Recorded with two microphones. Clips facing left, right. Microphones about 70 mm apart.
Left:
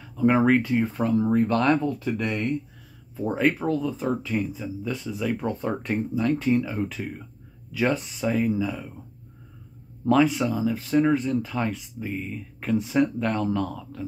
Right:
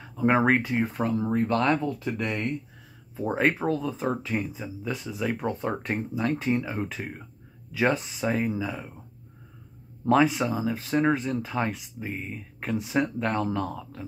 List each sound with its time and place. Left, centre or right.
0.0 s speech: right
10.0 s speech: right